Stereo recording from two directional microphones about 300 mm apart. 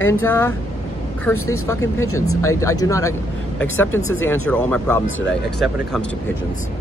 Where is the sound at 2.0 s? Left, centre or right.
Left.